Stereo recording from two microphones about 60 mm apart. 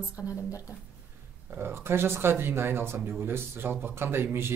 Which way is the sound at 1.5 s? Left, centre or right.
Right.